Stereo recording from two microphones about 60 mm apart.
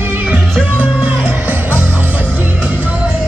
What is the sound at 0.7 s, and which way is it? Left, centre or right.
Music, right.